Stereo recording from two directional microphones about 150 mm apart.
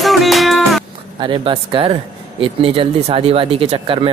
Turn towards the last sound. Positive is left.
turn(degrees=-35)  # may be behind; listen again after turning